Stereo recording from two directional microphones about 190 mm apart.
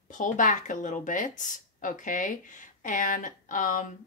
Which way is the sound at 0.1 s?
40° left (ahead or behind).